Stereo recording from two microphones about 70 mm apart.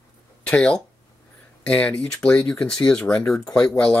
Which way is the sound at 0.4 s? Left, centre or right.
Centre.